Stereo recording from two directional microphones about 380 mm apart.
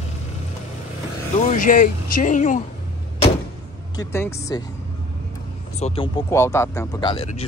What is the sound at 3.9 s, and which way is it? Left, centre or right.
Speech, centre.